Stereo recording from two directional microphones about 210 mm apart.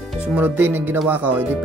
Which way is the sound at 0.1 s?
5° right (ahead or behind).